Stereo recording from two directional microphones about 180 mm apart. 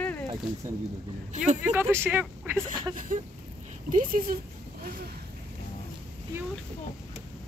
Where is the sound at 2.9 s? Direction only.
45° right (ahead or behind).